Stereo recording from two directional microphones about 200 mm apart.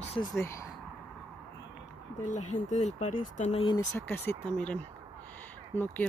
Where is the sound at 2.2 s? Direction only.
35° left (ahead or behind).